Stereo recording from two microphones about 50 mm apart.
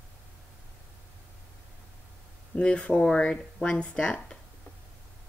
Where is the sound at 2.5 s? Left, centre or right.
Left.